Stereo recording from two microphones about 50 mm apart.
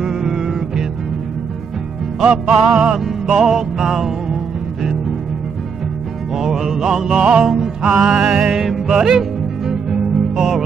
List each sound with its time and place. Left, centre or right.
0.0 s music: centre
2.2 s music: centre
6.3 s music: centre